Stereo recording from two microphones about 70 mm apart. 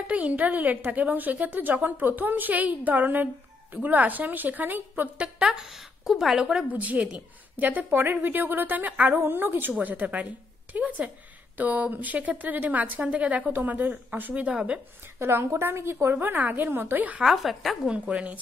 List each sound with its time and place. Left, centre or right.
0.0 s speech: centre
5.4 s speech: centre
6.7 s speech: right
15.1 s speech: right
17.2 s speech: centre
17.8 s speech: centre